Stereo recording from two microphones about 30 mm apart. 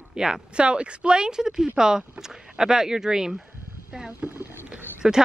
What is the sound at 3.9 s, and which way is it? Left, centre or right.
Wild animals, right.